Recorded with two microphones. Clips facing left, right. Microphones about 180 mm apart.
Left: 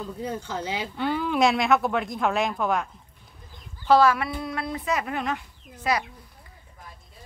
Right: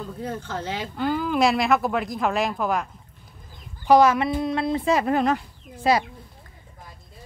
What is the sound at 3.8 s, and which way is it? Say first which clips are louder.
Speech: right 3 dB; 15° right (ahead or behind).